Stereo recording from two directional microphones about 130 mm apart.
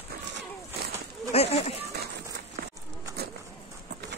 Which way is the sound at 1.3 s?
55° left (ahead or behind).